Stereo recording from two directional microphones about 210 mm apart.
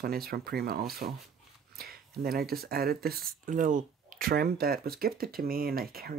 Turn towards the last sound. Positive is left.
turn(degrees=-45)  # may be behind; listen again after turning